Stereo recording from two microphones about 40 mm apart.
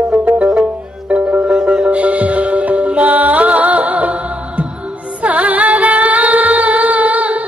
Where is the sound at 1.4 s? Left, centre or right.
Right.